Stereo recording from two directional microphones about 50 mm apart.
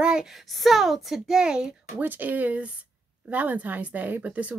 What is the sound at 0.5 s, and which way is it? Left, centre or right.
A woman's voice, centre.